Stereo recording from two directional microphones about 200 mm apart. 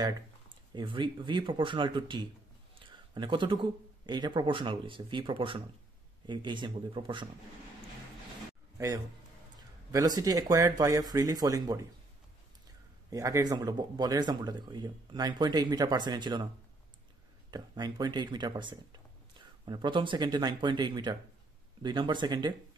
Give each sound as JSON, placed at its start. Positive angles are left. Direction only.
{"t": 0.7, "sound": "speech", "side_deg": -25}
{"t": 8.7, "sound": "a man's voice", "side_deg": -15}
{"t": 13.1, "sound": "speech", "side_deg": -15}
{"t": 17.5, "sound": "speech", "side_deg": -20}